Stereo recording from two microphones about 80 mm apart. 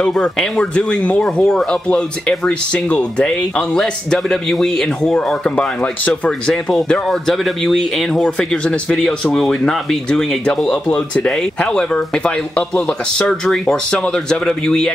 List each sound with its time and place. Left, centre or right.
0.0 s speech: centre
6.5 s speech: centre